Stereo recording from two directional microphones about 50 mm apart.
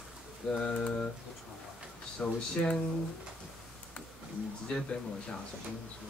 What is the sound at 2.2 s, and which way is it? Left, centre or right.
Speech, centre.